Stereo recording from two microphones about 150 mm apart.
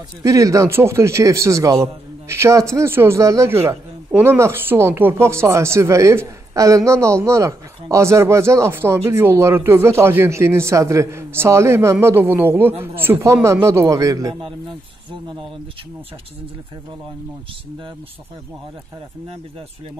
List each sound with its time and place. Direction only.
0.2 s a man's voice: 20° right (ahead or behind)